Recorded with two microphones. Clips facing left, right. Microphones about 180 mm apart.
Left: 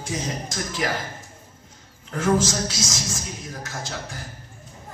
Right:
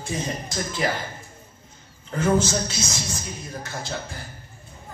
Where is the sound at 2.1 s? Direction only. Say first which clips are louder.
Even; 90° left.